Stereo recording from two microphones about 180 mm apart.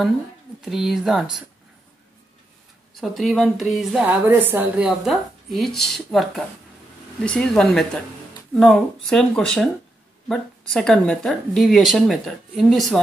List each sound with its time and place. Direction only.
0.6 s a woman's voice: centre (ahead or behind)
3.0 s a woman's voice: centre (ahead or behind)